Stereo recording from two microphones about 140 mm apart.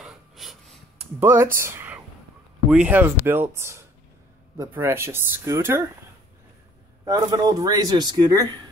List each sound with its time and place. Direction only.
0.0 s a sound: centre (ahead or behind)
1.2 s speech: 15° right (ahead or behind)
7.1 s speech: 30° right (ahead or behind)